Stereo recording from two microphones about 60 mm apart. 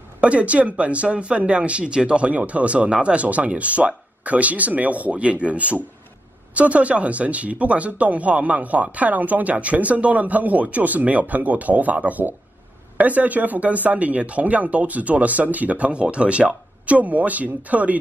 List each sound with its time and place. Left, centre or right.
0.2 s speech: right